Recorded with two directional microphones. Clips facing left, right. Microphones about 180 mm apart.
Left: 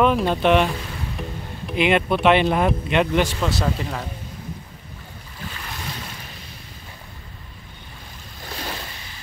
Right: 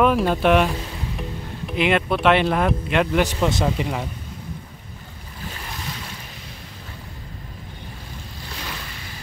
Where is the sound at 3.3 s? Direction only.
15° right (ahead or behind).